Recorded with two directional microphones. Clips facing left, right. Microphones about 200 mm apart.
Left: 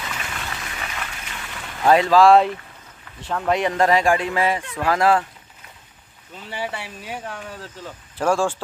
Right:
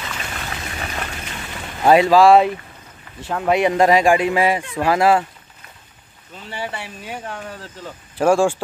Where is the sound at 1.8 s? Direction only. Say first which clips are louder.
Right 2 dB; 10° right (ahead or behind).